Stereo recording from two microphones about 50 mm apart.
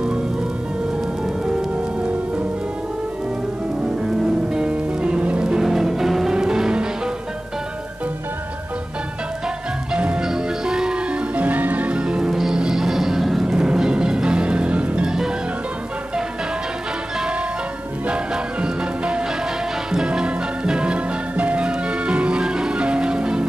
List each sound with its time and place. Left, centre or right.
4.6 s music: centre
5.6 s music: centre
9.9 s music: right
10.2 s music: centre
11.3 s music: right
12.0 s music: centre
18.0 s music: centre